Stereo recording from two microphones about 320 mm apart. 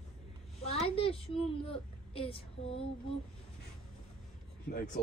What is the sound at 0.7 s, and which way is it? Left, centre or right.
A woman's voice, centre.